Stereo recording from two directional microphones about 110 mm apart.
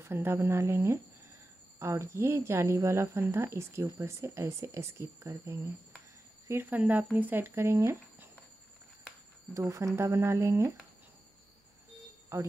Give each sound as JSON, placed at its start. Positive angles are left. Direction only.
{"t": 0.0, "sound": "speech", "side_deg": -20}
{"t": 9.5, "sound": "speech", "side_deg": -30}
{"t": 12.3, "sound": "speech", "side_deg": -25}